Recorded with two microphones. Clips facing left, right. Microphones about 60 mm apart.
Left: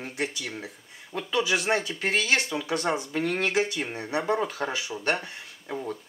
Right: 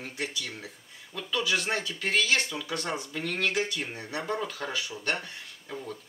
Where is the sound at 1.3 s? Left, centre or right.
Centre.